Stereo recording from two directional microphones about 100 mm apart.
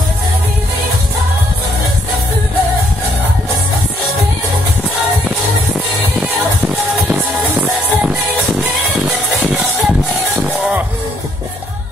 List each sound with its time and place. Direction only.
9.3 s music: centre (ahead or behind)